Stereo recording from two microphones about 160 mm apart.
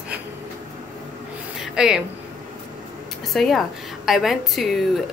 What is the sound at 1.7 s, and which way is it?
Speech, 5° right (ahead or behind).